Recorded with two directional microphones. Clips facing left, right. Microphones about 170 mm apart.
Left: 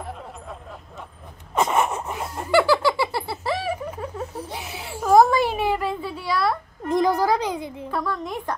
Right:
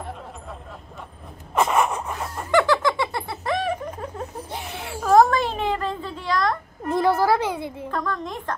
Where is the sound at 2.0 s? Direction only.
15° left (ahead or behind).